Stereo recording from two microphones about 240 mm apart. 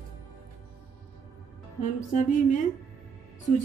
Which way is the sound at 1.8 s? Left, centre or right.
Left.